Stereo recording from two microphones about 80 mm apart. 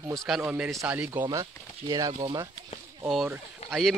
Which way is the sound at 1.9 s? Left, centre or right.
Right.